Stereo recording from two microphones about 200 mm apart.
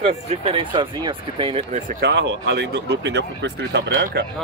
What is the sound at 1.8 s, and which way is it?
Speech, 45° right (ahead or behind).